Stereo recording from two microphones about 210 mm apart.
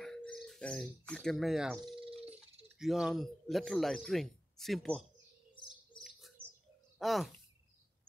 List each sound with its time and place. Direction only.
0.0 s speech: 5° left (ahead or behind)
2.0 s a sound: 25° right (ahead or behind)
2.8 s a man's voice: centre (ahead or behind)
6.0 s bird: centre (ahead or behind)
7.0 s speech: centre (ahead or behind)